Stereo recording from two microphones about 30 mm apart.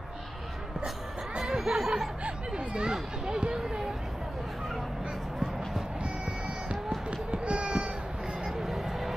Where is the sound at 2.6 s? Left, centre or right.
Right.